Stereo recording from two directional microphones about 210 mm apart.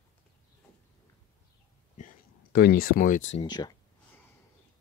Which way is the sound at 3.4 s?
20° left (ahead or behind).